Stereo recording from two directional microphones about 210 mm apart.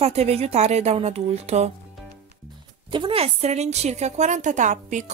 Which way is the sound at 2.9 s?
25° right (ahead or behind).